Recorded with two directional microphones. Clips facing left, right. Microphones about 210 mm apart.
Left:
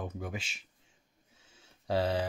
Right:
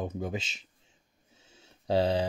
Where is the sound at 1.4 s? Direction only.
25° right (ahead or behind).